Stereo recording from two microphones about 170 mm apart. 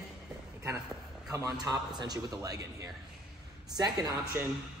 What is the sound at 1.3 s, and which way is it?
Speech, 20° right (ahead or behind).